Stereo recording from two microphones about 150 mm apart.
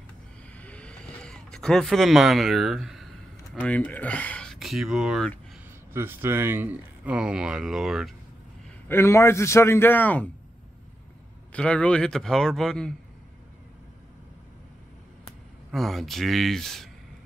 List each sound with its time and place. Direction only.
0.6 s a sound: 10° left (ahead or behind)
3.5 s speech: 10° left (ahead or behind)
5.9 s speech: 15° right (ahead or behind)
8.8 s speech: 15° left (ahead or behind)
11.5 s a man's voice: 10° left (ahead or behind)
15.7 s a man's voice: centre (ahead or behind)